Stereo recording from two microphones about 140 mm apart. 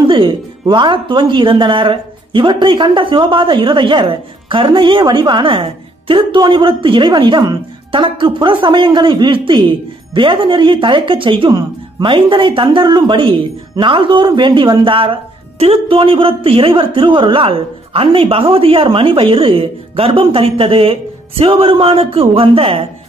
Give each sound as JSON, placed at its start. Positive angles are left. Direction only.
{"t": 0.0, "sound": "speech", "side_deg": -35}